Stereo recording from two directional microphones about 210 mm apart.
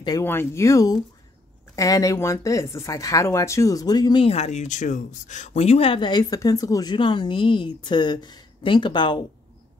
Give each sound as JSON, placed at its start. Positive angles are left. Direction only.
{"t": 0.0, "sound": "speech", "side_deg": 15}